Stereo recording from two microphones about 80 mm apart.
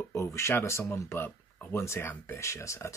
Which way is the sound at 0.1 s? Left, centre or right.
Left.